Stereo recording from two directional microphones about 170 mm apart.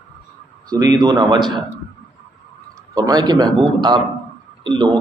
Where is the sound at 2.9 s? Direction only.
20° right (ahead or behind).